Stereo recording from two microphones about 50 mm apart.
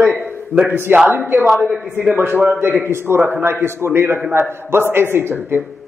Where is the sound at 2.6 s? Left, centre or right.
Right.